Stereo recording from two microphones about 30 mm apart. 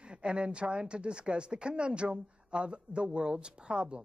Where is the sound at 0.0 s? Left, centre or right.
Right.